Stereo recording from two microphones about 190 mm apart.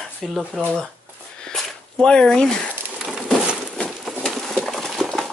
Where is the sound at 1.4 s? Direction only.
5° left (ahead or behind).